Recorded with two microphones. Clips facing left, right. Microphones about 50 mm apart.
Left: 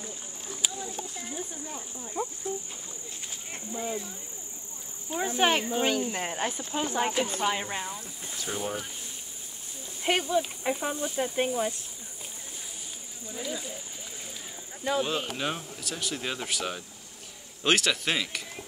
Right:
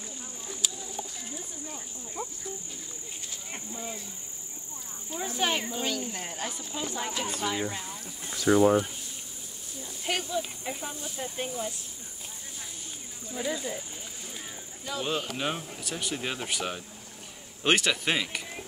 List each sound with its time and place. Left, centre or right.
0.6 s a sound: centre
2.5 s speech: left
3.7 s speech: left
5.1 s speech: left
8.4 s speech: right
10.0 s speech: left
14.9 s speech: left
15.3 s speech: centre